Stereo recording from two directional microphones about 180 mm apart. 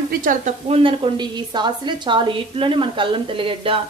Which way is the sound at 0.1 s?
50° right (ahead or behind).